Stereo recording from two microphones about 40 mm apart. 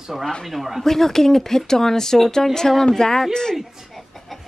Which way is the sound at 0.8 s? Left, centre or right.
Centre.